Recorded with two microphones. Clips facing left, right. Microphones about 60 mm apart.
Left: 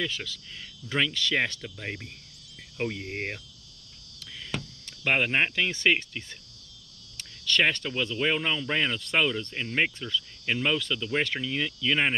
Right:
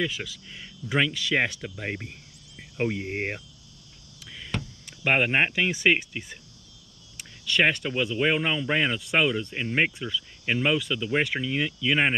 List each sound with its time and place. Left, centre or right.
0.0 s speech: centre
2.8 s cricket: centre
4.6 s speech: centre